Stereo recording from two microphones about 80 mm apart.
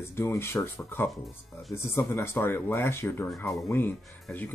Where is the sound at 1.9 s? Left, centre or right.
Left.